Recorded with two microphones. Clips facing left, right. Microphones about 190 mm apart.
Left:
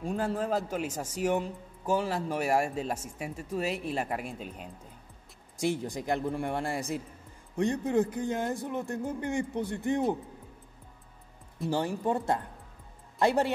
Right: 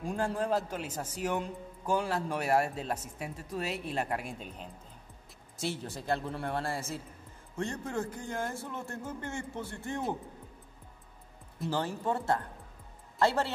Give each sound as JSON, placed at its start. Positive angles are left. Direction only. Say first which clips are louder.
{"t": 0.0, "sound": "a man's voice", "louder": "left 2 dB", "side_deg": 0}
{"t": 5.6, "sound": "speech", "louder": "left 6 dB", "side_deg": 15}
{"t": 11.7, "sound": "speech", "louder": "left 3 dB", "side_deg": 15}